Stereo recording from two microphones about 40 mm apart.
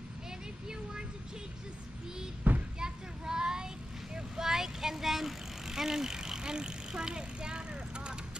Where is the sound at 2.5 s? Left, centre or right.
Right.